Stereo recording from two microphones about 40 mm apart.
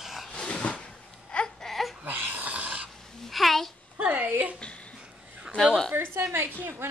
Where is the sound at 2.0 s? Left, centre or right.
Right.